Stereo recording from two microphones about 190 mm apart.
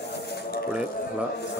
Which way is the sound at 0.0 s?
60° left (ahead or behind).